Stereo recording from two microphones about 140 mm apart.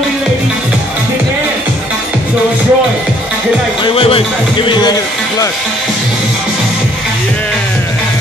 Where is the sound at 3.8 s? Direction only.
40° left (ahead or behind).